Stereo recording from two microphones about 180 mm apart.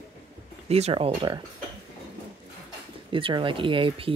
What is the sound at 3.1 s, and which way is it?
Speech, 30° right (ahead or behind).